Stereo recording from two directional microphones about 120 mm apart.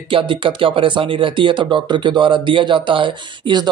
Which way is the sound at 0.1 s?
45° right (ahead or behind).